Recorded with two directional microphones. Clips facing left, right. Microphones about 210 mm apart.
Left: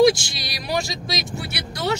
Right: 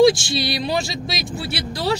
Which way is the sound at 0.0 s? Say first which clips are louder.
Right 2 dB; 25° right (ahead or behind).